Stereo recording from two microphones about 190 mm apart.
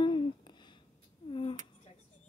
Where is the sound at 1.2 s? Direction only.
25° left (ahead or behind).